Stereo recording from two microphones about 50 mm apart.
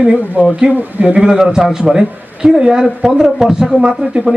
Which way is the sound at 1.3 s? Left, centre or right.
Centre.